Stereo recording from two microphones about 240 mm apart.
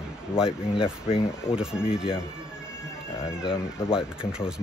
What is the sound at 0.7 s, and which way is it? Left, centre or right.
Speech, left.